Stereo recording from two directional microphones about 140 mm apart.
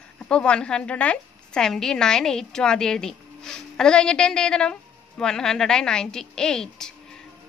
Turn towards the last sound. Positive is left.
turn(degrees=5)  # may be behind; listen again after turning